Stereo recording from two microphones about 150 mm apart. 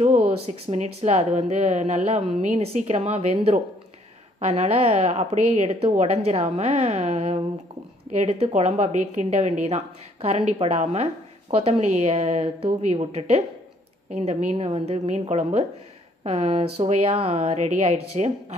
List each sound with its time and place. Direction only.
0.3 s speech: 50° right (ahead or behind)